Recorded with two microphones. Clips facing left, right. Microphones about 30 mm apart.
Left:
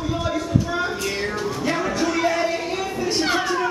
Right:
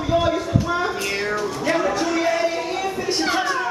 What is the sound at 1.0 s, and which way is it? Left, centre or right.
Music, centre.